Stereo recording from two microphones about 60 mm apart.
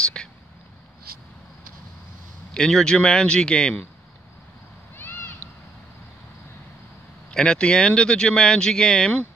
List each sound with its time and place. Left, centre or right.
0.0 s whispering: centre
2.5 s speech: centre
4.9 s a sound: left
7.2 s speech: centre